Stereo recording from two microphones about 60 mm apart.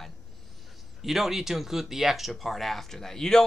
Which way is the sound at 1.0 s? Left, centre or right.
Centre.